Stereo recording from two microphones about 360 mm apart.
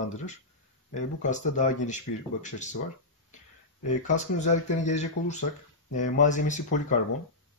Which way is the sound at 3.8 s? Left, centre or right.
Centre.